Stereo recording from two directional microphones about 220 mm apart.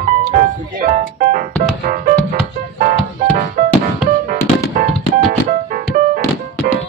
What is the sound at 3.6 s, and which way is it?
Music, 40° right (ahead or behind).